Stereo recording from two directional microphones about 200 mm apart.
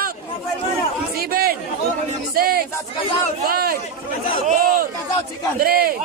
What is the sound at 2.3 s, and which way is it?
Crowd, 50° right (ahead or behind).